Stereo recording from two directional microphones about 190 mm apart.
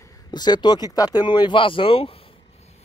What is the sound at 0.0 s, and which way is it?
Speech, 20° left (ahead or behind).